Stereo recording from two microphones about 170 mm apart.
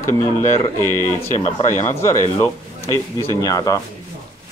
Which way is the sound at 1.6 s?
20° left (ahead or behind).